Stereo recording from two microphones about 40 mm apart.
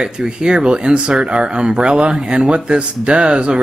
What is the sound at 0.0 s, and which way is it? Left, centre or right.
Speech, centre.